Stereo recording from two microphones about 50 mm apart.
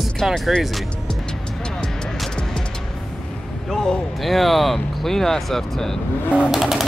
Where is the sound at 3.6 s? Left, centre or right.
Centre.